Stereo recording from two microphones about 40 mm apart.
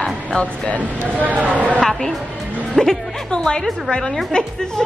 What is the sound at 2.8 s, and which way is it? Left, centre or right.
A woman's voice, centre.